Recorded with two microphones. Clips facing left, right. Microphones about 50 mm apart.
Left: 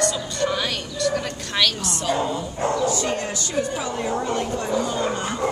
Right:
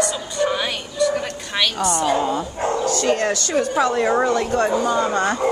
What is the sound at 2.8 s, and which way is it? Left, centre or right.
Speech, right.